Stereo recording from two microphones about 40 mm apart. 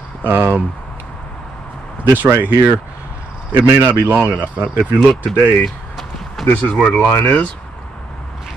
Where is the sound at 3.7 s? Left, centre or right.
Right.